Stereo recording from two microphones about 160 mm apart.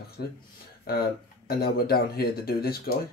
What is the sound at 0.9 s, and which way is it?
Speech, 70° left (ahead or behind).